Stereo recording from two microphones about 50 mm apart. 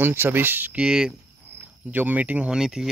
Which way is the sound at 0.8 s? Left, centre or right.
Centre.